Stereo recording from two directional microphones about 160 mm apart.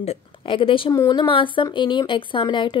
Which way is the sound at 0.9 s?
25° left (ahead or behind).